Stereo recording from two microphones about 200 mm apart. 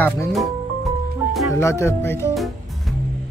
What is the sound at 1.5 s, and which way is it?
Speech, 15° left (ahead or behind).